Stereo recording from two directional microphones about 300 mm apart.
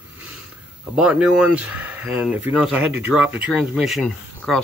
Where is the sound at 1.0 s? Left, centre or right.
Centre.